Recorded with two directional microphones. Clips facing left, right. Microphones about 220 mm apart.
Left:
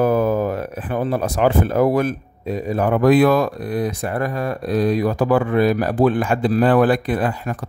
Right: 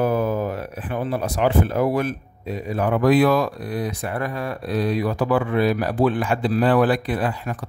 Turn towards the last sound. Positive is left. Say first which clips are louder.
# left 3 dB
turn(degrees=45)  # may be behind; listen again after turning